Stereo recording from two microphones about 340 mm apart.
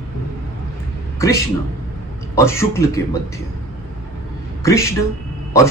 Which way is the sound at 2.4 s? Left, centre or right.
Centre.